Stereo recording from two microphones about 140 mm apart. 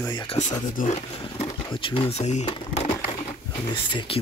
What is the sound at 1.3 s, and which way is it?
Speech, 35° left (ahead or behind).